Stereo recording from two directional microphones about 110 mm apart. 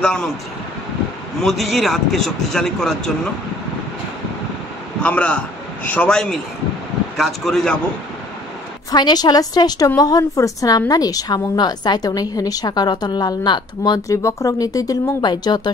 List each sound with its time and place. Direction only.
0.0 s speech: 5° left (ahead or behind)
1.4 s speech: centre (ahead or behind)
5.0 s speech: 10° left (ahead or behind)
8.9 s a woman's voice: 40° left (ahead or behind)